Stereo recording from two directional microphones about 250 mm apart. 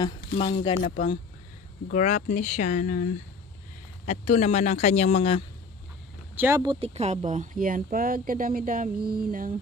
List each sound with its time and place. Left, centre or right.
0.0 s speech: left
6.3 s speech: centre; by 9.6 s right